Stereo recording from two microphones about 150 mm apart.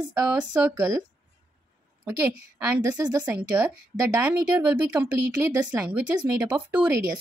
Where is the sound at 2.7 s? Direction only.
25° right (ahead or behind).